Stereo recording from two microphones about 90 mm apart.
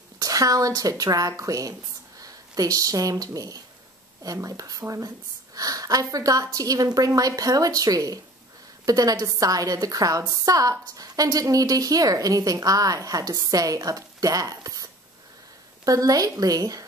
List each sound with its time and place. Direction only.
0.2 s a woman's voice: 40° right (ahead or behind)